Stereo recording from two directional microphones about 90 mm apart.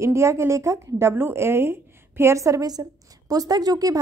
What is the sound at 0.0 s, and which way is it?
A woman's voice, 35° right (ahead or behind).